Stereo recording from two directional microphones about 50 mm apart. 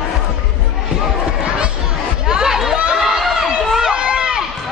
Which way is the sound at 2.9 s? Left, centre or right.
Centre.